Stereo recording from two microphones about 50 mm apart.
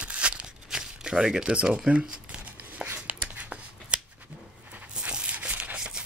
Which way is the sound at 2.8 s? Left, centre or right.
Right.